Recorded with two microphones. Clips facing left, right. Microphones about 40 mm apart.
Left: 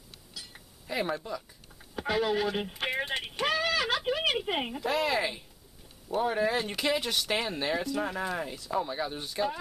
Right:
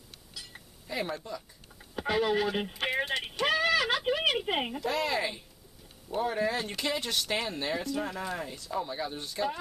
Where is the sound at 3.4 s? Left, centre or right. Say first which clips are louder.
Right 2 dB; centre.